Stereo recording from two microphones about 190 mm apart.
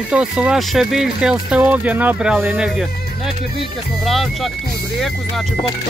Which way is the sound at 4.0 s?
Centre (ahead or behind).